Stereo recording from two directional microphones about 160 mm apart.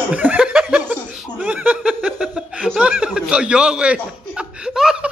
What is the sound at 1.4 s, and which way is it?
Chuckle, 10° right (ahead or behind).